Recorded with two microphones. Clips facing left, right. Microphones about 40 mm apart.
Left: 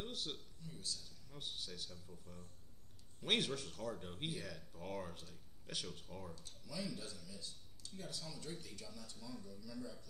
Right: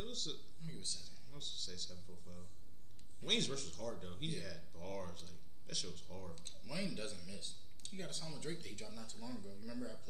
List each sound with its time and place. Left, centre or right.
0.0 s a sound: centre
0.6 s a man's voice: right
1.3 s speech: centre
6.3 s speech: right
8.2 s speech: right